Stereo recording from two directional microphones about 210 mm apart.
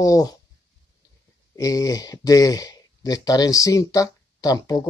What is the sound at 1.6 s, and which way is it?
Speech, 15° left (ahead or behind).